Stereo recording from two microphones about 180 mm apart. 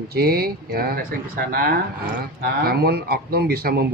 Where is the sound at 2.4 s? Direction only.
60° right (ahead or behind).